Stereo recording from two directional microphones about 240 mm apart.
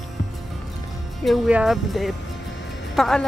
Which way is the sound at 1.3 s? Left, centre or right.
Centre.